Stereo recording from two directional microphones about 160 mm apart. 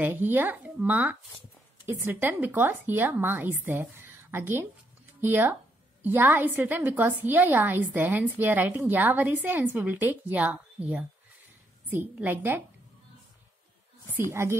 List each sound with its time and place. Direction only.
0.0 s a woman's voice: 10° right (ahead or behind)
14.1 s a woman's voice: 15° right (ahead or behind)